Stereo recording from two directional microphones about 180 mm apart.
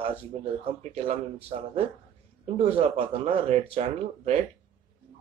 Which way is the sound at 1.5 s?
40° right (ahead or behind).